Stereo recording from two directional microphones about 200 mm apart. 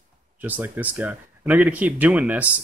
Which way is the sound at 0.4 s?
10° right (ahead or behind).